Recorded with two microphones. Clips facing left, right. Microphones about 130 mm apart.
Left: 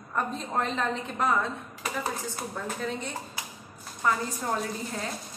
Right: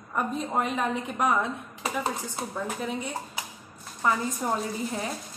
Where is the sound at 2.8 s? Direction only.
15° right (ahead or behind).